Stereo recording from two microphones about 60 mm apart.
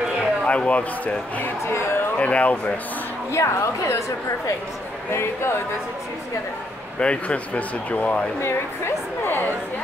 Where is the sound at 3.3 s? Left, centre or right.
Left.